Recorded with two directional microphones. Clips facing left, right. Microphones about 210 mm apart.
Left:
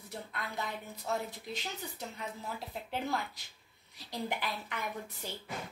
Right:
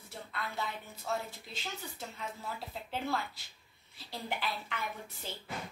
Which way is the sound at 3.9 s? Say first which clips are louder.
Left 2 dB; 15° left (ahead or behind).